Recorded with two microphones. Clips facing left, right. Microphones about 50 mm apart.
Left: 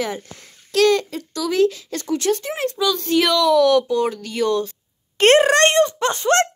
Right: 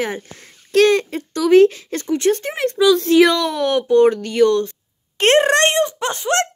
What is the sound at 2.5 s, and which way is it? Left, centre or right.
Speech, right.